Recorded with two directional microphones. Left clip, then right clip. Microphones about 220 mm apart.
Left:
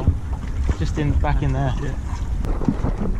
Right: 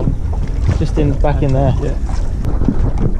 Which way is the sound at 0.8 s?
5° left (ahead or behind).